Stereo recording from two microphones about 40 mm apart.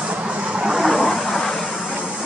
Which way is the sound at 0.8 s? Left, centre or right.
Centre.